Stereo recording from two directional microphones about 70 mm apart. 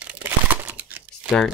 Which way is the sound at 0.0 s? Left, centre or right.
Right.